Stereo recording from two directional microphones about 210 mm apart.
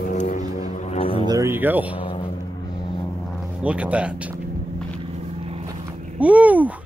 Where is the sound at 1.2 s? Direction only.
15° right (ahead or behind).